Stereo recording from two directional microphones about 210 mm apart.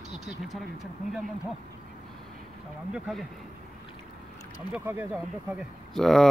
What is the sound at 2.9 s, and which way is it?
Speech, centre (ahead or behind).